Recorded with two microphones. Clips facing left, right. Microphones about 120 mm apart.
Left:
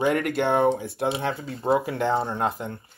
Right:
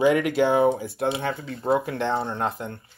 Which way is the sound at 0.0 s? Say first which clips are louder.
Right 3 dB; centre (ahead or behind).